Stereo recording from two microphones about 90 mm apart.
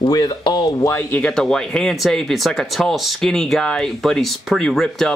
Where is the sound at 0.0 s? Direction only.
50° left (ahead or behind).